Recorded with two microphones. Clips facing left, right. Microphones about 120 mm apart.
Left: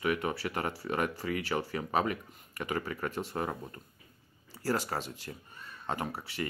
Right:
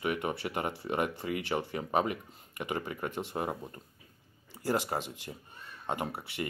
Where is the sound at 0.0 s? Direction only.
20° right (ahead or behind).